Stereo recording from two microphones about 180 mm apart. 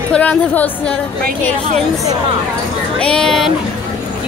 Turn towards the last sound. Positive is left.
turn(degrees=0)  # may be behind; listen again after turning